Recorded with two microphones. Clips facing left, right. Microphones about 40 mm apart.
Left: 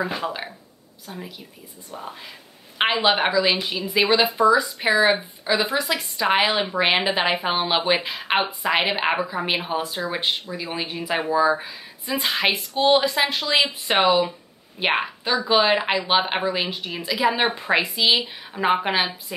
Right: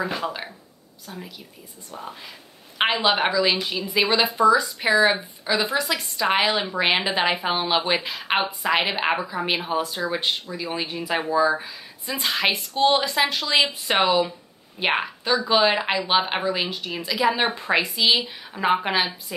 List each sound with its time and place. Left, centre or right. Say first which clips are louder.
0.0 s speech: left 1 dB; centre
2.8 s a woman's voice: left 1 dB; centre